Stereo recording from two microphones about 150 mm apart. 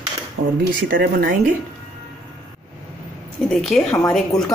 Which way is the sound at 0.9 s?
80° right.